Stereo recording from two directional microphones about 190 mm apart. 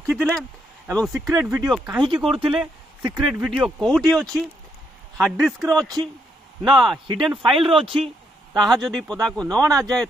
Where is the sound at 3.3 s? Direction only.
Centre (ahead or behind).